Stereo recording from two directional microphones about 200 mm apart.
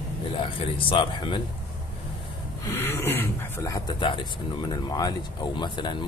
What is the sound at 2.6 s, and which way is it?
Throat clearing, 10° left (ahead or behind).